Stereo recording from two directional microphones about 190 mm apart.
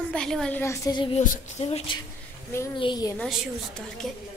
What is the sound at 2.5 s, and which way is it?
Speech, 15° left (ahead or behind).